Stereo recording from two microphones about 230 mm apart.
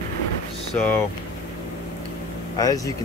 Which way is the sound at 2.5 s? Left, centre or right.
Centre.